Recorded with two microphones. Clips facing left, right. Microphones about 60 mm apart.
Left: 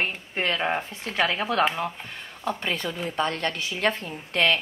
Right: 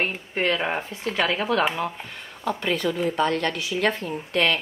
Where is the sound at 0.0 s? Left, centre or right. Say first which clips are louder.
Right 3 dB; right.